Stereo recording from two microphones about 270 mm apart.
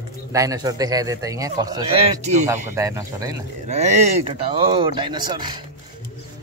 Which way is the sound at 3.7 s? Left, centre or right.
Right.